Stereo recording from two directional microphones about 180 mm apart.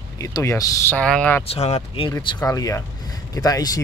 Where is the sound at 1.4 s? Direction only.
35° left (ahead or behind).